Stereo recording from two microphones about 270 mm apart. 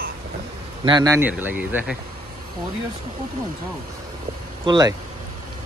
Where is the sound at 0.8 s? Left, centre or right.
Centre.